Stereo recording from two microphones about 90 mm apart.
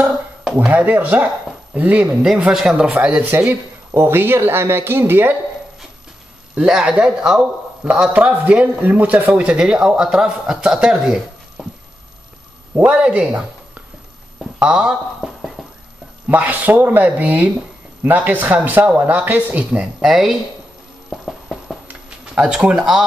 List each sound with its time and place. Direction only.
0.7 s speech: 15° right (ahead or behind)
3.9 s speech: 25° right (ahead or behind)
6.5 s speech: 10° right (ahead or behind)
11.6 s a sound: centre (ahead or behind)
12.7 s speech: 15° right (ahead or behind)
14.6 s speech: 10° right (ahead or behind)
15.6 s clip-clop: centre (ahead or behind)
16.3 s speech: 20° right (ahead or behind)
20.0 s speech: 5° right (ahead or behind)
21.1 s music: 5° left (ahead or behind)
21.8 s a sound: 10° right (ahead or behind)